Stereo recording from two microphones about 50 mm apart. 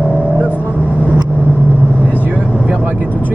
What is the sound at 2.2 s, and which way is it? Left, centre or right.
Vehicle, right.